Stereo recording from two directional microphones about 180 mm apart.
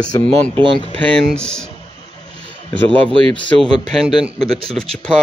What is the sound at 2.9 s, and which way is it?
Speech, 30° right (ahead or behind).